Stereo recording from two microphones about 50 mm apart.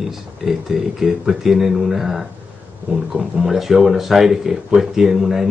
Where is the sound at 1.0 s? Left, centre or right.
Centre.